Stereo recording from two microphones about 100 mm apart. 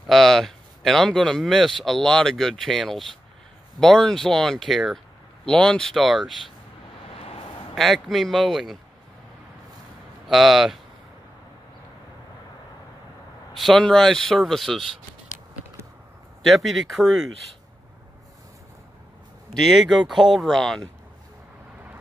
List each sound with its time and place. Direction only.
0.0 s speech: centre (ahead or behind)
7.1 s vehicle: 80° left
7.7 s speech: centre (ahead or behind)
10.3 s speech: centre (ahead or behind)
13.6 s speech: 5° left (ahead or behind)
16.4 s speech: centre (ahead or behind)
19.6 s speech: centre (ahead or behind)